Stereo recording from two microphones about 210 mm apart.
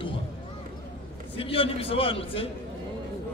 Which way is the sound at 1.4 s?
25° left (ahead or behind).